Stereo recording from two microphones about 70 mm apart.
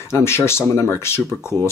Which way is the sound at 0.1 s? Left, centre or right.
Left.